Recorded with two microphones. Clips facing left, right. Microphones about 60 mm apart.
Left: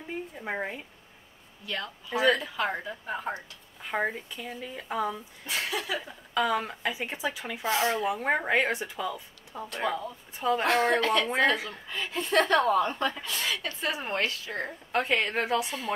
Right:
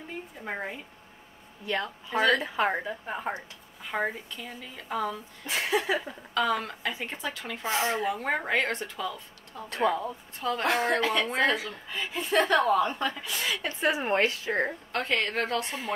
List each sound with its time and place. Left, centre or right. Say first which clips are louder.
0.4 s speech: left 1 dB; centre
2.4 s a woman's voice: right 3 dB; right
3.8 s speech: left 1 dB; centre
5.5 s a woman's voice: right 4 dB; right
6.3 s speech: even; centre
7.6 s a woman's voice: left 1 dB; right
8.1 s speech: left 2 dB; centre
9.8 s speech: right 4 dB; right
10.4 s speech: left 2 dB; centre
10.7 s a woman's voice: left 1 dB; centre
13.2 s speech: even; centre
13.6 s a woman's voice: right 5 dB; right
14.9 s speech: left 2 dB; centre